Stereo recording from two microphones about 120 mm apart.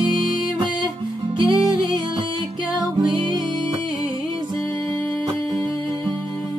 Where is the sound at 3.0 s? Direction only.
40° right (ahead or behind).